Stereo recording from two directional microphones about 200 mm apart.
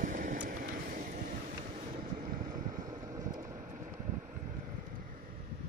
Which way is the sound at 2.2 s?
45° right (ahead or behind).